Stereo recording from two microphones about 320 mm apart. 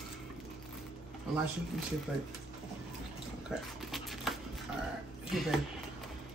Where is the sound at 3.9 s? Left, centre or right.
Centre.